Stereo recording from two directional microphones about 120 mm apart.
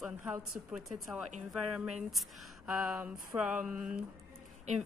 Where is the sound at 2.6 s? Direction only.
5° right (ahead or behind).